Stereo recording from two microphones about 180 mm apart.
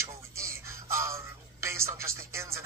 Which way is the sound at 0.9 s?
15° right (ahead or behind).